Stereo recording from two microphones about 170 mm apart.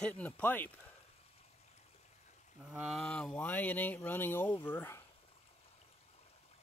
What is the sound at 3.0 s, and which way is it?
Speech, 5° left (ahead or behind).